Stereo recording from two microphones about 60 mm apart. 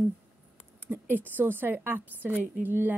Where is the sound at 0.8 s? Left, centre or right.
Right.